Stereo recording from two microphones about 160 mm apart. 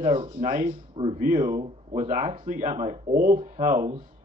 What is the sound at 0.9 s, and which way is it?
Speech, 35° right (ahead or behind).